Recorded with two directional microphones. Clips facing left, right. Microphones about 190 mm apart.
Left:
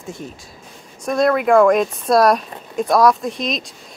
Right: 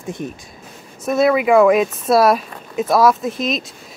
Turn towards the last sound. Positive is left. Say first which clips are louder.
# right 2 dB
turn(degrees=0)  # may be behind; listen again after turning